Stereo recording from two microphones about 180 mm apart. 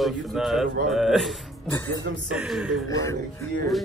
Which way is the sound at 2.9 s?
20° left (ahead or behind).